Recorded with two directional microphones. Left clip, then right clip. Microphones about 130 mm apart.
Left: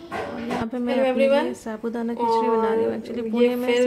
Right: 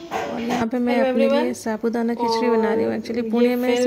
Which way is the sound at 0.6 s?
35° right (ahead or behind).